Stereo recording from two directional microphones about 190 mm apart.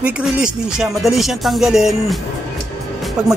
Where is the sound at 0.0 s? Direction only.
5° right (ahead or behind).